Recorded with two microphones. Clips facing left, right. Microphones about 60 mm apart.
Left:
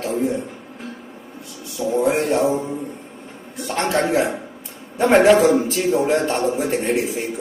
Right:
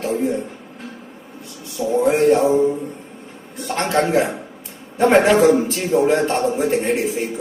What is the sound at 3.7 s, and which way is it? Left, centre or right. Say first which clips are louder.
Speech: right 2 dB; right.